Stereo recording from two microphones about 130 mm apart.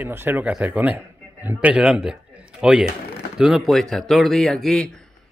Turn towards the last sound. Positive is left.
turn(degrees=5)  # may be behind; listen again after turning